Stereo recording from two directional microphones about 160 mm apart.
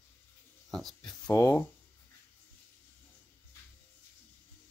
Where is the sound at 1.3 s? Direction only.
20° left (ahead or behind).